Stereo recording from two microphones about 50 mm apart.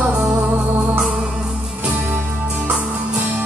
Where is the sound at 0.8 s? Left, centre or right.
Right.